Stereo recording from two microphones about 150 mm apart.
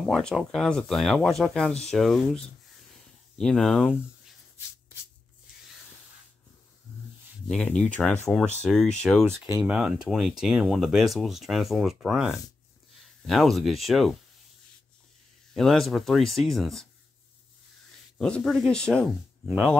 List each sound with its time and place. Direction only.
0.0 s speech: centre (ahead or behind)
7.4 s speech: 5° left (ahead or behind)
9.2 s speech: 15° right (ahead or behind)
9.6 s speech: 5° right (ahead or behind)
15.5 s speech: centre (ahead or behind)
18.1 s speech: 5° left (ahead or behind)